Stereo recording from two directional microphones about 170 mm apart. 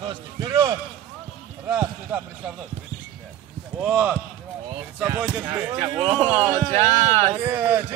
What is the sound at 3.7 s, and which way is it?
Speech, 5° right (ahead or behind).